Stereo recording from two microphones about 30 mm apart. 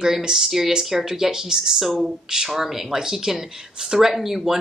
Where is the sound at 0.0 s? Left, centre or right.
Centre.